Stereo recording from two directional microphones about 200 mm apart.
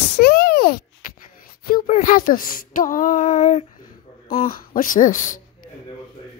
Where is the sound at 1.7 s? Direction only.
40° left (ahead or behind).